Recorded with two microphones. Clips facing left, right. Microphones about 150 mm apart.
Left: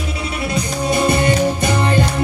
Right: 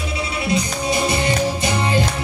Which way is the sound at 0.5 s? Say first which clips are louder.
Left 2 dB; 55° left (ahead or behind).